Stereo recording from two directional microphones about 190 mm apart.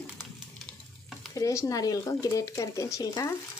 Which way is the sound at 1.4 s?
15° left (ahead or behind).